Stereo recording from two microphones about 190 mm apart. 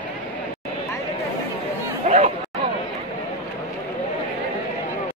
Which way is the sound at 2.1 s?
35° right (ahead or behind).